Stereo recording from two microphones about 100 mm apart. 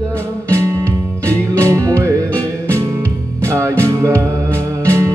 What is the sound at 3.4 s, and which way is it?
Music, 25° right (ahead or behind).